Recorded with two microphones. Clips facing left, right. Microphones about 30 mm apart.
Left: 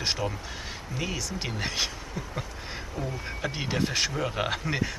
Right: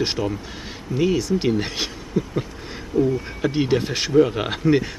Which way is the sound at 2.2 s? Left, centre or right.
Right.